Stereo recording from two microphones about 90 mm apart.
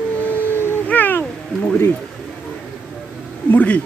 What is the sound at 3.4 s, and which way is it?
Speech, 15° left (ahead or behind).